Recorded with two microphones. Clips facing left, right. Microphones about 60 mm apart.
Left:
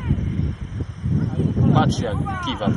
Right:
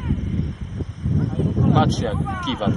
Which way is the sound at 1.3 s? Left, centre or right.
Centre.